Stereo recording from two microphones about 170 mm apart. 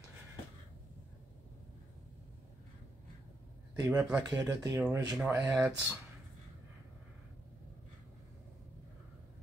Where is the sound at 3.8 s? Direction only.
15° right (ahead or behind).